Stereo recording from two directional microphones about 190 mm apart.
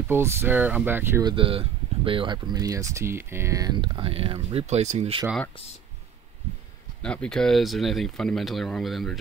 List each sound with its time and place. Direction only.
0.1 s speech: 10° right (ahead or behind)
1.2 s speech: 30° right (ahead or behind)
5.2 s speech: centre (ahead or behind)
7.0 s speech: 5° left (ahead or behind)